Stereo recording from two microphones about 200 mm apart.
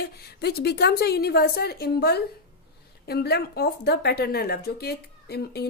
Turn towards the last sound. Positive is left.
turn(degrees=55)  # may be behind; listen again after turning